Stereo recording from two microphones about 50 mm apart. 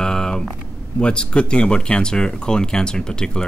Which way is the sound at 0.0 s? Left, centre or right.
Centre.